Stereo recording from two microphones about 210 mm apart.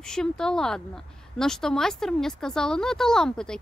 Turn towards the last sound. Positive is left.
turn(degrees=5)  # may be behind; listen again after turning